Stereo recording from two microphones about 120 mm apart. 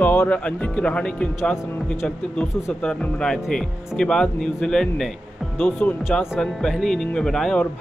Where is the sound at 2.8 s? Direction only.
5° left (ahead or behind).